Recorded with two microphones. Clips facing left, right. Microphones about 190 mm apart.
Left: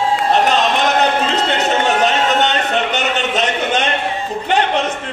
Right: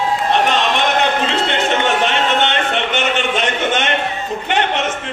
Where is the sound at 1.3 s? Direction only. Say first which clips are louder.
Left 1 dB; 40° left (ahead or behind).